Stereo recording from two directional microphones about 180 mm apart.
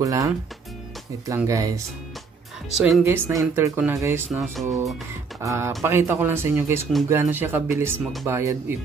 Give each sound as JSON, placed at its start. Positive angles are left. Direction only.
{"t": 0.0, "sound": "speech", "side_deg": -20}
{"t": 2.7, "sound": "speech", "side_deg": -5}
{"t": 4.3, "sound": "speech", "side_deg": 0}
{"t": 5.4, "sound": "speech", "side_deg": -15}